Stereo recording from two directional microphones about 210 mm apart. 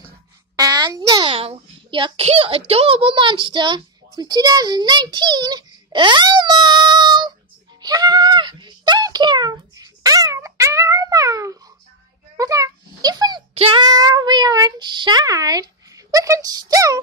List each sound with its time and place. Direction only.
0.6 s a child's voice: 20° right (ahead or behind)
7.8 s a sound: 20° right (ahead or behind)
12.4 s a child's voice: 15° right (ahead or behind)